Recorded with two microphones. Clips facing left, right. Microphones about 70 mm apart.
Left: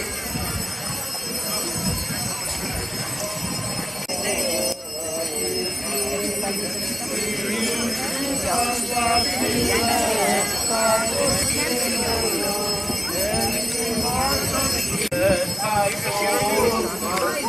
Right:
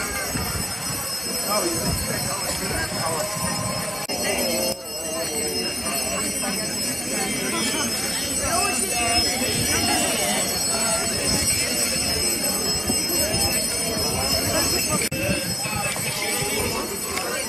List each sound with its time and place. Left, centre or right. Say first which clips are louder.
8.5 s bell: right 1 dB; left
14.0 s bell: left 5 dB; left
15.1 s music: left 7 dB; left
16.2 s a sound: left 9 dB; left